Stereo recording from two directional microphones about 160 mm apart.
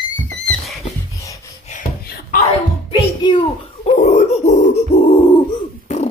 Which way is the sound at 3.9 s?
45° left (ahead or behind).